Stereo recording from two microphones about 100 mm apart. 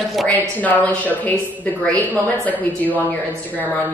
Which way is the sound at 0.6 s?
15° left (ahead or behind).